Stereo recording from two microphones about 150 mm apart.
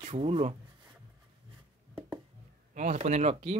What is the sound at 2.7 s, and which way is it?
Speech, 50° right (ahead or behind).